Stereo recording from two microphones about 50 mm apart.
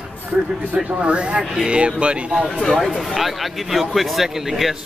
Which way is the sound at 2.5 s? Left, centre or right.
Centre.